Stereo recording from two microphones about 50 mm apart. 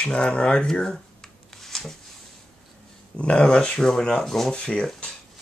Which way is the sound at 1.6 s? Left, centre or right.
Centre.